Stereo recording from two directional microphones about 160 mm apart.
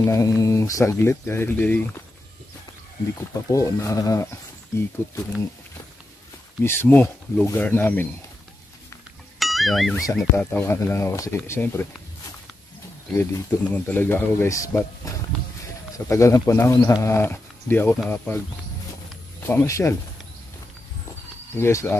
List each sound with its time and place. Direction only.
0.0 s speech: 20° left (ahead or behind)
3.3 s speech: 20° left (ahead or behind)
6.6 s speech: 15° left (ahead or behind)
9.4 s speech: centre (ahead or behind)
10.3 s speech: 15° left (ahead or behind)
13.1 s speech: 15° left (ahead or behind)
19.4 s speech: 15° left (ahead or behind)
21.5 s speech: 15° left (ahead or behind)